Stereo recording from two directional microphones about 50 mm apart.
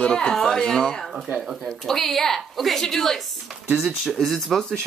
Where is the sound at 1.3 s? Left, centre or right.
Centre.